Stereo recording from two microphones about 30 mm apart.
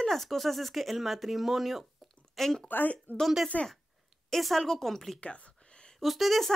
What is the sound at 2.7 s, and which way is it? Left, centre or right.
Speech, left.